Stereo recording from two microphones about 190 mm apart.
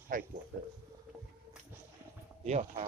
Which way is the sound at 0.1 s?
45° right (ahead or behind).